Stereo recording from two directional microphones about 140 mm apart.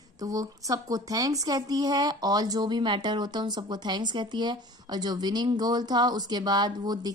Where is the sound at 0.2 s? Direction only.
25° right (ahead or behind).